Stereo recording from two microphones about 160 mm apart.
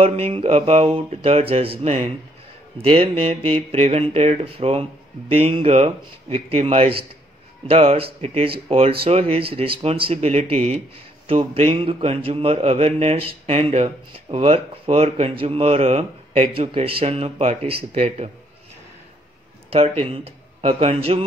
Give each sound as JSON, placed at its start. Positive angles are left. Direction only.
{"t": 0.0, "sound": "a man's voice", "side_deg": -40}
{"t": 19.7, "sound": "a man's voice", "side_deg": -35}